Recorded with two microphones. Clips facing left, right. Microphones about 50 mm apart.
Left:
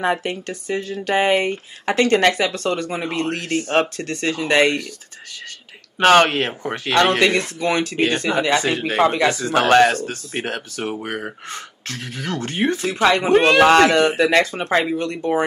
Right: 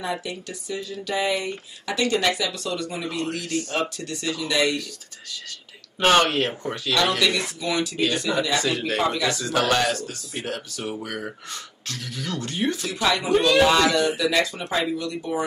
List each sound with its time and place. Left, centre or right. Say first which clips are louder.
0.0 s speech: left 8 dB; left
5.9 s speech: left 5 dB; left